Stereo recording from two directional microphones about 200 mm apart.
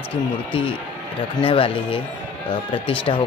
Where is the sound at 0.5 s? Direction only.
25° left (ahead or behind).